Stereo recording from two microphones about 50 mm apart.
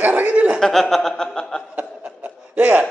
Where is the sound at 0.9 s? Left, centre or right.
Centre.